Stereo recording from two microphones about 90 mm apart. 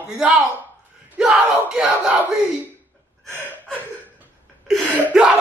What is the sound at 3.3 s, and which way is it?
Gasp, 20° left (ahead or behind).